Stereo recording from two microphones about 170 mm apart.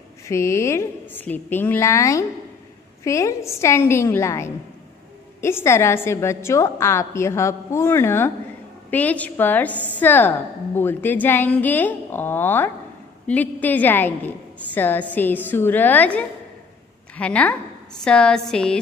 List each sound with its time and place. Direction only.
0.3 s a woman's voice: 15° left (ahead or behind)
9.7 s a woman's voice: 10° right (ahead or behind)
9.9 s a woman's voice: 10° left (ahead or behind)